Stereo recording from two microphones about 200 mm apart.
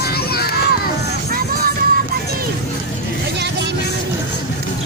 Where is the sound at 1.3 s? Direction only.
45° right (ahead or behind).